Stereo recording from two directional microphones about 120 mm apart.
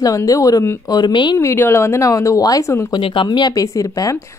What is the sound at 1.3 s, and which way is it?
A woman's voice, 20° left (ahead or behind).